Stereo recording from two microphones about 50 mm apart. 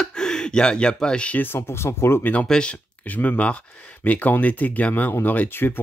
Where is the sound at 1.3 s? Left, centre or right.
Left.